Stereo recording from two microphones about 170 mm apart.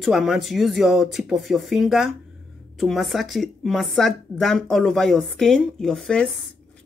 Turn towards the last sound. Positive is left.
turn(degrees=5)  # may be behind; listen again after turning